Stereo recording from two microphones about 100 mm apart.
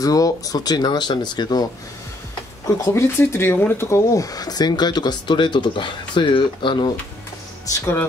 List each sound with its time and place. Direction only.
0.0 s speech: 35° left (ahead or behind)
2.8 s speech: 30° left (ahead or behind); by 6.9 s 55° left (ahead or behind)
7.6 s speech: 30° left (ahead or behind)